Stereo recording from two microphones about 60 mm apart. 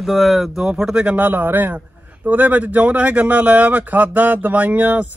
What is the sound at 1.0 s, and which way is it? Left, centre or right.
A man's voice, right.